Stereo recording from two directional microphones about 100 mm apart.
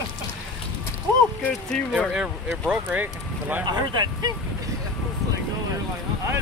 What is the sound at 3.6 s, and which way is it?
Speech, 45° right (ahead or behind).